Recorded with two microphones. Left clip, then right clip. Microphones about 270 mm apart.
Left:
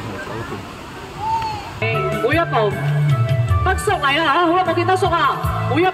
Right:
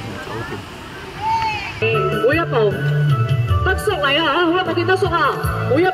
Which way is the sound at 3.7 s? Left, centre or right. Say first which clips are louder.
Even; left.